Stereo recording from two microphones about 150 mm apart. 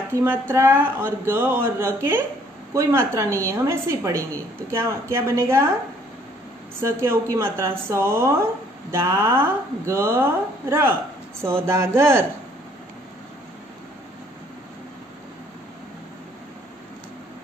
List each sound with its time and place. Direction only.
0.1 s a woman's voice: 15° right (ahead or behind)
6.8 s speech: 20° right (ahead or behind)